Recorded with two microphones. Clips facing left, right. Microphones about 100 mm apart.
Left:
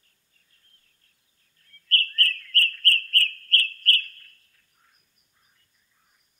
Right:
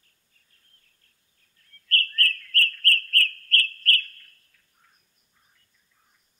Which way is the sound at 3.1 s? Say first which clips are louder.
Right 1 dB; 30° left (ahead or behind).